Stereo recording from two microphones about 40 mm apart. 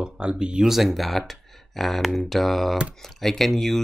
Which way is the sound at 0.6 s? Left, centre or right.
Centre.